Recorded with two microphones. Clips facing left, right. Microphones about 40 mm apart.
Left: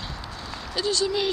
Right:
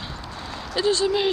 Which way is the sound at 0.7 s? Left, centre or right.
Right.